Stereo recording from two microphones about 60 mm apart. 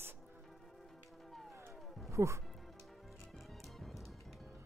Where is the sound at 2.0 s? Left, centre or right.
Right.